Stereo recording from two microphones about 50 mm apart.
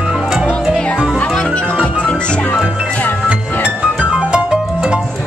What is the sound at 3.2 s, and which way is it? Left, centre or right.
Music, right.